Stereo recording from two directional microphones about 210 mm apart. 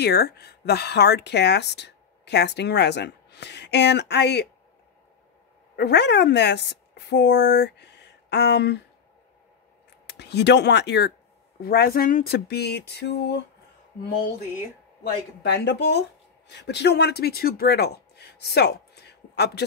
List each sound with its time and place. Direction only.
0.0 s speech: 50° left (ahead or behind)
5.8 s a woman's voice: 50° left (ahead or behind)
10.0 s speech: 55° left (ahead or behind)
15.4 s speech: 55° left (ahead or behind)